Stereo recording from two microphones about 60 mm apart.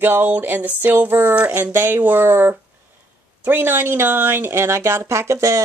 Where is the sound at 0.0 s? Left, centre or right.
Right.